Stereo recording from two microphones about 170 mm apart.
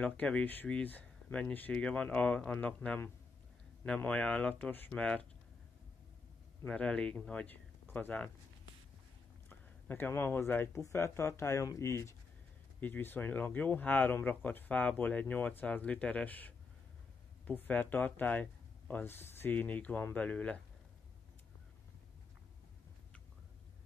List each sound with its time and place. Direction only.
0.0 s speech: 5° left (ahead or behind)
6.6 s speech: 5° left (ahead or behind)
9.5 s speech: 10° left (ahead or behind)